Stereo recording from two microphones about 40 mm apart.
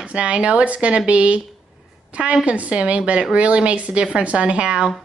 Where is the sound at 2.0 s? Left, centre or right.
Right.